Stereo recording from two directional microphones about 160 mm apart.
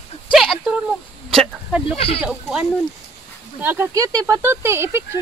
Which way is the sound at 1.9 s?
35° left (ahead or behind).